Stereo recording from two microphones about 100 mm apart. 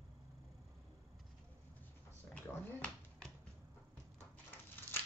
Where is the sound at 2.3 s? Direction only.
20° left (ahead or behind).